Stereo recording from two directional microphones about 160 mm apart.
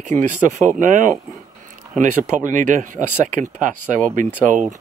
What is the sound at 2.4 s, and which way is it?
Speech, 50° right (ahead or behind).